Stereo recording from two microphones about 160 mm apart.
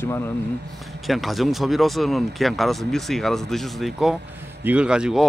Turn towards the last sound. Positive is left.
turn(degrees=-5)  # may be behind; listen again after turning